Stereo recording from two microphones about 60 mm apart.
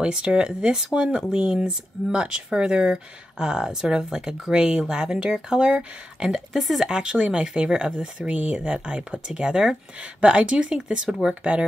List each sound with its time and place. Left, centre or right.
0.0 s speech: centre
6.9 s speech: centre